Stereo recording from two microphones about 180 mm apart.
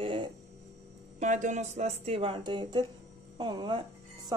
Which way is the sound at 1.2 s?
45° right (ahead or behind).